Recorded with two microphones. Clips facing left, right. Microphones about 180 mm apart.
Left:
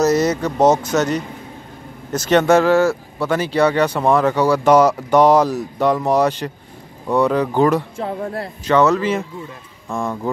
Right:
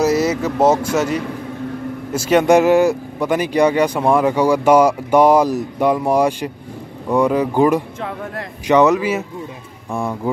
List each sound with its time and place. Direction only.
0.0 s speech: 5° right (ahead or behind)
8.0 s speech: 30° left (ahead or behind)
8.6 s speech: 15° right (ahead or behind)